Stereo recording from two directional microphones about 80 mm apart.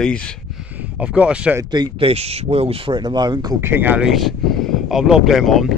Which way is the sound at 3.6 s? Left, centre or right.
Right.